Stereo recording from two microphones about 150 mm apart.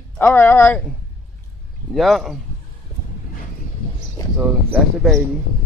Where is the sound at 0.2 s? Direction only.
15° left (ahead or behind).